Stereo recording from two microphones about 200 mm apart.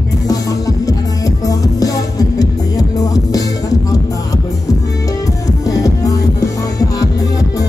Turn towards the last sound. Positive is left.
turn(degrees=15)  # may be behind; listen again after turning